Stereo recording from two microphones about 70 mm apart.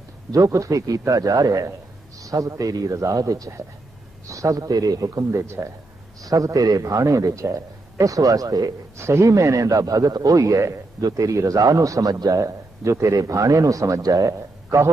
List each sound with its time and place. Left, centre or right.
0.3 s a man's voice: right
5.4 s speech: right
6.2 s a man's voice: right
8.9 s a man's voice: right
12.4 s a man's voice: right